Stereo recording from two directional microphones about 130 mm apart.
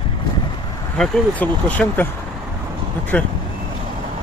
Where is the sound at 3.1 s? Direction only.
10° left (ahead or behind).